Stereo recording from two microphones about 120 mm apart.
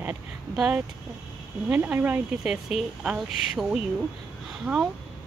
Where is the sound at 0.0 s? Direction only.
10° right (ahead or behind).